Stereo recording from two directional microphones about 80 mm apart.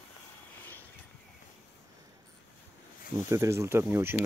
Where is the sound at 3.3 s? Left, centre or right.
Right.